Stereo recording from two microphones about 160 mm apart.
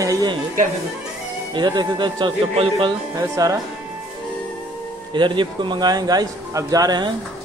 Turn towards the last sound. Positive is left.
turn(degrees=-25)  # may be behind; listen again after turning